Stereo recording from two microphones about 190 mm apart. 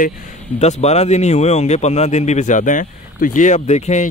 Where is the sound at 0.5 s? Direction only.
35° left (ahead or behind).